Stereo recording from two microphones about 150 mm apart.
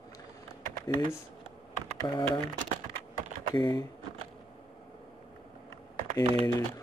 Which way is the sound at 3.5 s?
25° left (ahead or behind).